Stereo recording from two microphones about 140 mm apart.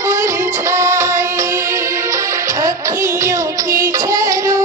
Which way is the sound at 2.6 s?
20° right (ahead or behind).